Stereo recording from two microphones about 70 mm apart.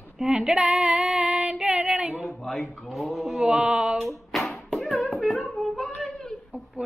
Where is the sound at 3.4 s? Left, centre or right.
Centre.